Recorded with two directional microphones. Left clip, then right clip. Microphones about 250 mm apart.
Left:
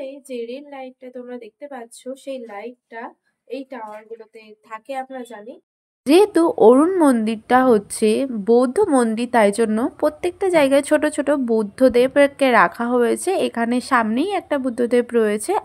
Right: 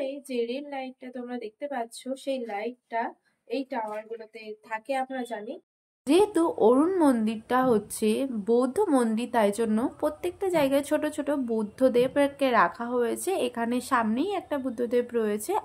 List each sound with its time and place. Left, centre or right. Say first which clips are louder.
0.0 s a woman's voice: left 1 dB; centre
6.0 s speech: left 8 dB; left